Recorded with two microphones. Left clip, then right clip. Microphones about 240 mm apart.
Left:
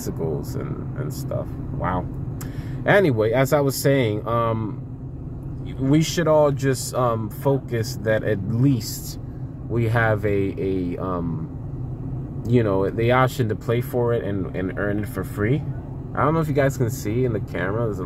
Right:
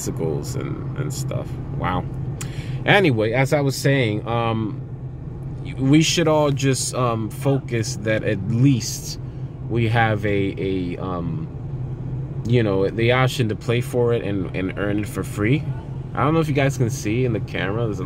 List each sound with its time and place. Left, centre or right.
1.3 s speech: centre
5.9 s speech: centre
9.8 s speech: centre
12.4 s speech: centre